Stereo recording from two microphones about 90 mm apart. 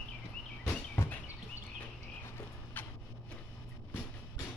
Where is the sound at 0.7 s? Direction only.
20° left (ahead or behind).